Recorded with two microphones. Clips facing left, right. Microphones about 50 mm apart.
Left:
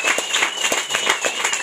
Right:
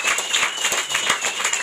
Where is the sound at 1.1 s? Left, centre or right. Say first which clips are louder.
Left 2 dB; centre.